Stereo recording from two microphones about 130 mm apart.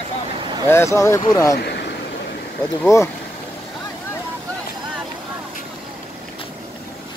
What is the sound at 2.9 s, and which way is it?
Speech, 25° left (ahead or behind).